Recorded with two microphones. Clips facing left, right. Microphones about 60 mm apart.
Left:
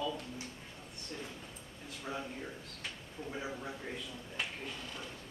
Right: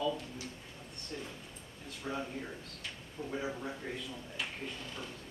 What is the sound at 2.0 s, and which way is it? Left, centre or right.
Speech, centre.